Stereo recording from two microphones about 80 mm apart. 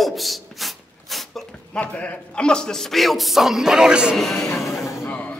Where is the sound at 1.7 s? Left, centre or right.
Centre.